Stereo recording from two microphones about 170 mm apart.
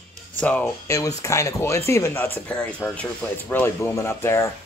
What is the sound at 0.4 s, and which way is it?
Speech, 5° left (ahead or behind).